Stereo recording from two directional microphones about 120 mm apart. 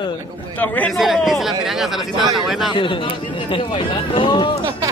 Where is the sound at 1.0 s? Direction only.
Centre (ahead or behind).